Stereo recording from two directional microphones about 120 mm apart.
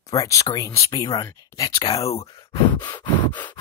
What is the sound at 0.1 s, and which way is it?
Speech, 30° left (ahead or behind).